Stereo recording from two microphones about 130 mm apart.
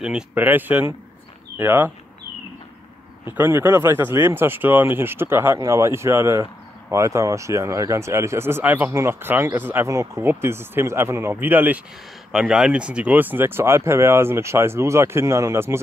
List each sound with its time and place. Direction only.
0.0 s speech: 10° right (ahead or behind)
3.3 s speech: 15° right (ahead or behind)